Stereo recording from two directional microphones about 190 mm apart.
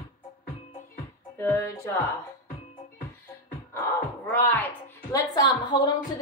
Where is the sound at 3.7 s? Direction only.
10° left (ahead or behind).